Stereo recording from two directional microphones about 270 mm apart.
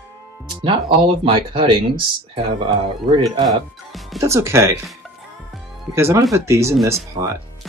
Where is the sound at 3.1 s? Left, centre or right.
Centre.